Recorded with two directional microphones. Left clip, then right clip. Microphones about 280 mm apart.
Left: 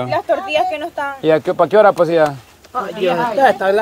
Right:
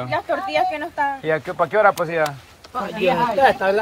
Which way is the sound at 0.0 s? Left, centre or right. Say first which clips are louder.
Left 5 dB; left.